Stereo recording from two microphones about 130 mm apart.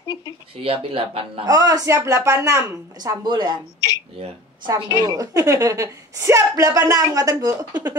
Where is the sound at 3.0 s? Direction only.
35° right (ahead or behind).